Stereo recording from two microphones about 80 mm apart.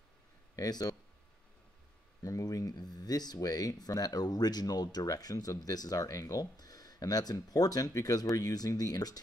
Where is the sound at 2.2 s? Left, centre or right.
Left.